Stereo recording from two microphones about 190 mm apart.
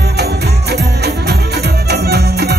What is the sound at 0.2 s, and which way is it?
Music, 60° right (ahead or behind).